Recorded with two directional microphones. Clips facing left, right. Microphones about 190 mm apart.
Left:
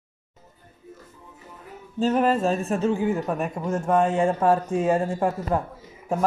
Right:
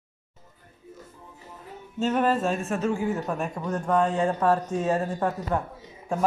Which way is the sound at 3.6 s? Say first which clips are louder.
Left 2 dB; 25° left (ahead or behind).